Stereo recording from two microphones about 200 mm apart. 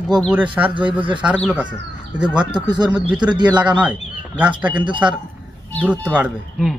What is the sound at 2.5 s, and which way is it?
Speech, 20° right (ahead or behind).